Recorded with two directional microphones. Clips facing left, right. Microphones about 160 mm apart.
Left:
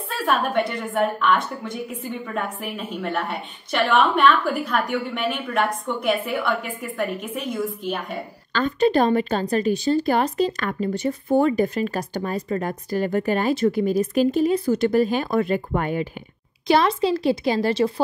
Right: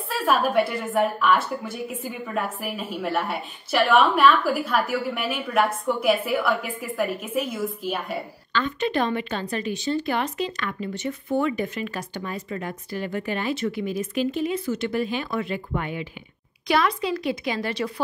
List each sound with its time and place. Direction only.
0.2 s a woman's voice: 5° right (ahead or behind)
8.5 s a woman's voice: 40° left (ahead or behind)
16.6 s a woman's voice: 30° left (ahead or behind)